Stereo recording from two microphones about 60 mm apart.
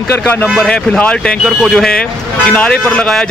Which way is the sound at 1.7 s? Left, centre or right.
Centre.